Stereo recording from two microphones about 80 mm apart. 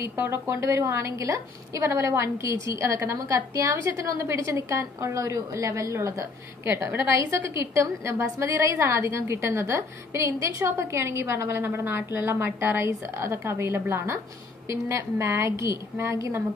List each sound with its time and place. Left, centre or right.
0.3 s a woman's voice: right